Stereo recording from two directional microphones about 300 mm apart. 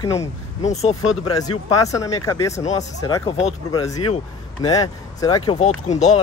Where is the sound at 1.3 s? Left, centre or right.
Centre.